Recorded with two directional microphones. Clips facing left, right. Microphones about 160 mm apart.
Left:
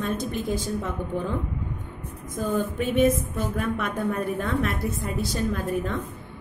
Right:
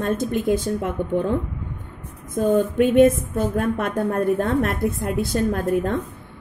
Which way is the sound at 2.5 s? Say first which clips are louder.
Right 8 dB; 60° right (ahead or behind).